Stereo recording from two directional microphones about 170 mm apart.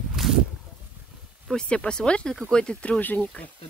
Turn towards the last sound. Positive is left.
turn(degrees=10)  # may be behind; listen again after turning